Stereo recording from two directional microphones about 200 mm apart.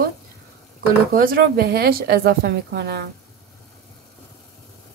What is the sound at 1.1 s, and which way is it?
Speech, 45° right (ahead or behind).